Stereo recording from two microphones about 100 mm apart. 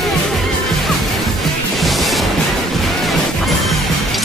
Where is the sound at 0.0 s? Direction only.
Centre (ahead or behind).